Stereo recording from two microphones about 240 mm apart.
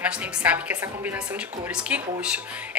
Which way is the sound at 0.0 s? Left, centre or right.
Centre.